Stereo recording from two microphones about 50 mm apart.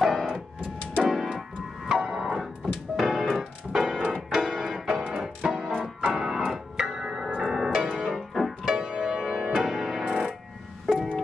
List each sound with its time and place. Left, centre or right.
0.0 s music: centre
1.0 s tick-tock: centre
1.9 s music: centre
2.6 s keyboard: centre
5.2 s music: centre
5.7 s organ: centre
7.4 s music: centre
8.6 s music: centre
10.0 s music: centre